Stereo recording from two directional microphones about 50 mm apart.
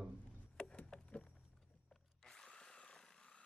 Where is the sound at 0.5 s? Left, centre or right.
Left.